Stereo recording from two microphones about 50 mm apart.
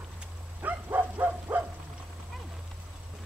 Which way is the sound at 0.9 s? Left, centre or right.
Right.